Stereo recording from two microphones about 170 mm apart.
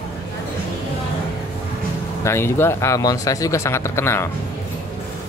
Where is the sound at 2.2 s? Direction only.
15° left (ahead or behind).